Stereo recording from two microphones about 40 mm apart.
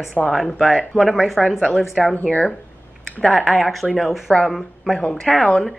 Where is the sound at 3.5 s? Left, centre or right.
Centre.